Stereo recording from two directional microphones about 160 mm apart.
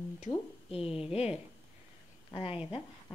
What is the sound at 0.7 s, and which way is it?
Speech, 35° left (ahead or behind).